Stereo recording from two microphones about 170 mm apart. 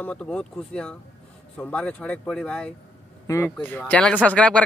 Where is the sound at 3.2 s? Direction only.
15° left (ahead or behind).